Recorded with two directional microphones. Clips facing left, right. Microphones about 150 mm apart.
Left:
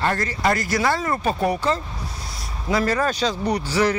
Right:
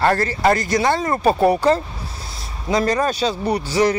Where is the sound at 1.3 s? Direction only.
35° right (ahead or behind).